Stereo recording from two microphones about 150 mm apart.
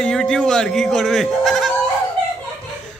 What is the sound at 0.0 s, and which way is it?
Speech, 5° left (ahead or behind).